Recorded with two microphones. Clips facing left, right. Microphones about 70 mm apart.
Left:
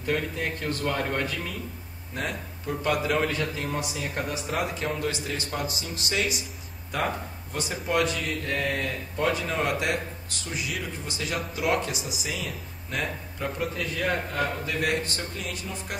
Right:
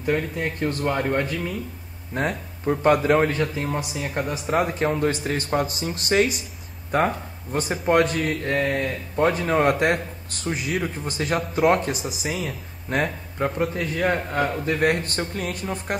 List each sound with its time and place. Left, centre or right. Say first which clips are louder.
0.0 s speech: right 4 dB; right
2.1 s a man's voice: right 6 dB; right
4.3 s a man's voice: right 9 dB; right
13.9 s a man's voice: right 5 dB; right